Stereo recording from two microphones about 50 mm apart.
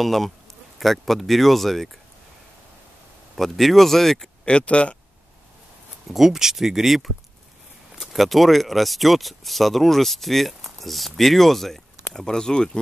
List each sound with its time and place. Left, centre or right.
0.0 s speech: centre
3.3 s speech: centre
4.5 s speech: left
6.1 s speech: centre